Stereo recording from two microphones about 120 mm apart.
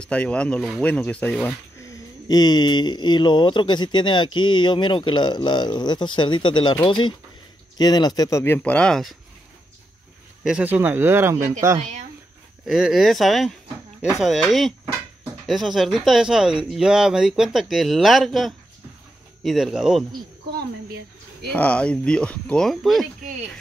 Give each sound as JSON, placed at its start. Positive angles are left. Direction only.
{"t": 0.0, "sound": "speech", "side_deg": 10}
{"t": 1.8, "sound": "speech", "side_deg": 30}
{"t": 10.4, "sound": "speech", "side_deg": -10}
{"t": 12.6, "sound": "speech", "side_deg": -5}
{"t": 21.5, "sound": "speech", "side_deg": 10}